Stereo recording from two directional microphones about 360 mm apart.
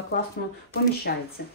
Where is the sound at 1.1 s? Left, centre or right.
Left.